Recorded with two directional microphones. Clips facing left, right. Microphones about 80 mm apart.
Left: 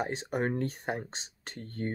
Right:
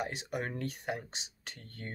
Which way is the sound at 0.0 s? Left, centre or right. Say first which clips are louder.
Left 5 dB; left.